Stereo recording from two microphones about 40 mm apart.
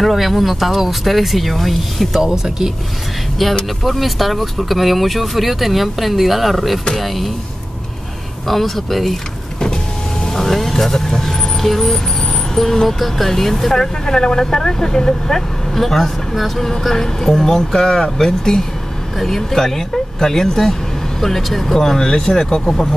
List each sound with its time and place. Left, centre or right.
0.0 s speech: centre
2.2 s speech: centre
3.8 s speech: centre
8.5 s speech: centre
10.2 s vehicle: centre
12.5 s speech: centre